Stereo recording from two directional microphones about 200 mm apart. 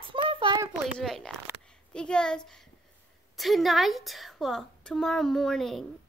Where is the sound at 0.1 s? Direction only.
25° right (ahead or behind).